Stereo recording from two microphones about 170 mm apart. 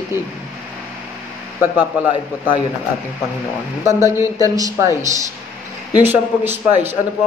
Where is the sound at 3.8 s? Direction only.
15° right (ahead or behind).